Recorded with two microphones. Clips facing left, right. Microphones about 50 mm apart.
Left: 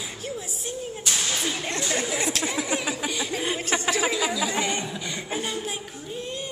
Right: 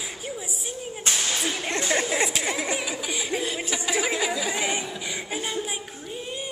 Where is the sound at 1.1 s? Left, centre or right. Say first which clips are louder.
Right 1 dB; centre.